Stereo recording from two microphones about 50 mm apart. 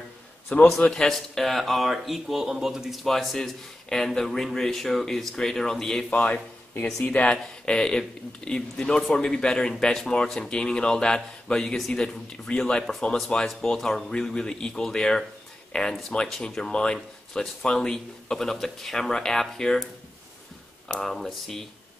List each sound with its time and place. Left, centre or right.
0.7 s speech: centre
6.0 s speech: left
13.5 s speech: centre
20.9 s speech: centre